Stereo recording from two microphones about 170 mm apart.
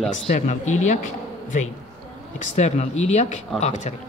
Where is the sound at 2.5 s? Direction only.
40° left (ahead or behind).